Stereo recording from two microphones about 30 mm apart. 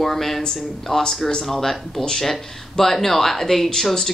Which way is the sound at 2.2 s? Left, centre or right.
Centre.